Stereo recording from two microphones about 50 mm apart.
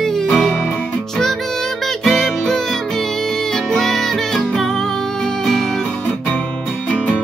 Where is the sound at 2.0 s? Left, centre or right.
Centre.